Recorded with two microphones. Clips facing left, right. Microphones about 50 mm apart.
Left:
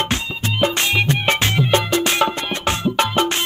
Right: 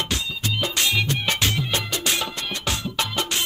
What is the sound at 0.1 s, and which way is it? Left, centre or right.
Music, left.